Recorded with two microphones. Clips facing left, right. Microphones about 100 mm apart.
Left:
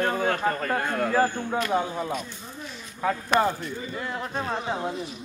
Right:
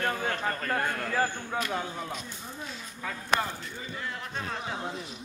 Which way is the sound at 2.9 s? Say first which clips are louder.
Left 7 dB; 55° left (ahead or behind).